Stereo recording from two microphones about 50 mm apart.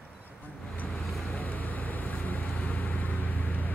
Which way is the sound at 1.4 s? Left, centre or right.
Left.